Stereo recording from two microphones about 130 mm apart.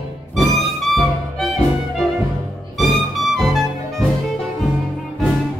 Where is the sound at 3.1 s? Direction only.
Centre (ahead or behind).